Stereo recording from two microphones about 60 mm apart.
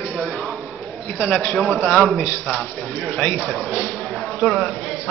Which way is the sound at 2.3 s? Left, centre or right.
Left.